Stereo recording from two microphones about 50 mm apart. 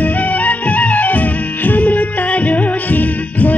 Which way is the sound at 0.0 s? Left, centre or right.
Left.